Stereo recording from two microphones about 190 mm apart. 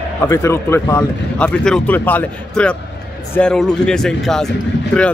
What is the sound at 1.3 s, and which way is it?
Speech, 5° left (ahead or behind).